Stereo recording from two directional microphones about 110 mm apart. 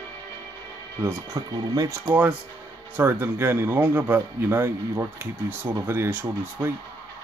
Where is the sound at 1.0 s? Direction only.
30° right (ahead or behind).